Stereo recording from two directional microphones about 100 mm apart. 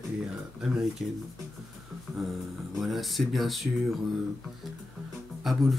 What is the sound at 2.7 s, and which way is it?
Music, centre (ahead or behind).